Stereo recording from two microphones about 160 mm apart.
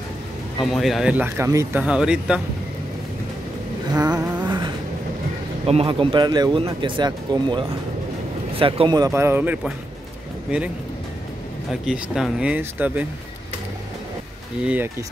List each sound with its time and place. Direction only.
0.7 s speech: centre (ahead or behind)
4.5 s vehicle: 30° right (ahead or behind)
5.7 s a man's voice: 35° right (ahead or behind); by 10.6 s 5° right (ahead or behind)
11.7 s speech: 5° right (ahead or behind)
14.6 s speech: 10° right (ahead or behind)